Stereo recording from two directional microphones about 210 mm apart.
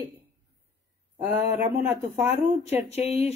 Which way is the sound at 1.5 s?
10° right (ahead or behind).